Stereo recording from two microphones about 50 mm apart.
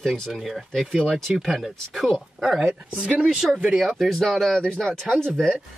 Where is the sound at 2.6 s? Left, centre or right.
Right.